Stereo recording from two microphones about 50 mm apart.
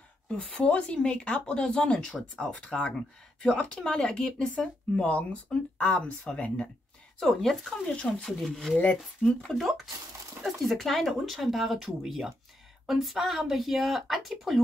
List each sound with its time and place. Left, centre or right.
0.4 s speech: centre
7.2 s speech: centre
7.8 s speech: left
8.2 s speech: centre